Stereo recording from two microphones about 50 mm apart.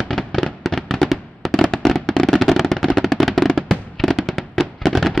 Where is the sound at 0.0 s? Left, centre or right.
Centre.